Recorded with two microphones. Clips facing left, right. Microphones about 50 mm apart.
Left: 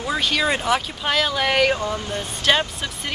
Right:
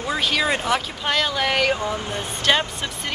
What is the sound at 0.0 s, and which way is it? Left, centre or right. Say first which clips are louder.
Speech: even; centre.